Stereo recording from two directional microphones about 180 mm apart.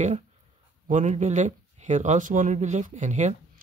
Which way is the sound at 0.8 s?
40° right (ahead or behind).